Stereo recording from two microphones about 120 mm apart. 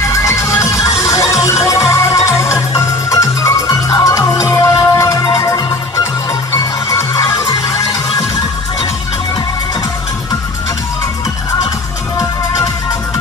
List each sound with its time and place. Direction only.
0.1 s music: 25° left (ahead or behind)